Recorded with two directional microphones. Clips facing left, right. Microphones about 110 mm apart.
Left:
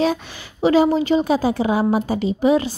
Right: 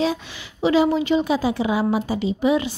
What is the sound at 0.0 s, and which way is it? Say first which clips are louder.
A woman's voice: left 3 dB; 45° left (ahead or behind).